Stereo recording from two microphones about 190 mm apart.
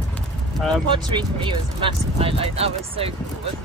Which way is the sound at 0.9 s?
25° right (ahead or behind).